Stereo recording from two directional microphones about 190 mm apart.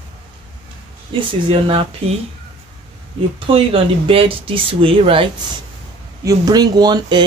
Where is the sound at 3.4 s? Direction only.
30° right (ahead or behind).